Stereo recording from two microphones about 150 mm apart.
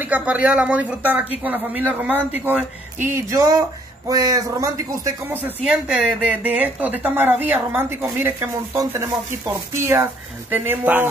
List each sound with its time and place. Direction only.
0.0 s a woman's voice: 10° right (ahead or behind)
5.6 s a woman's voice: 5° right (ahead or behind)